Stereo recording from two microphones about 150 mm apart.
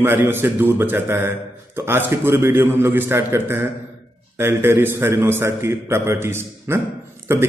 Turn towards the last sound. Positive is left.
turn(degrees=-15)  # may be behind; listen again after turning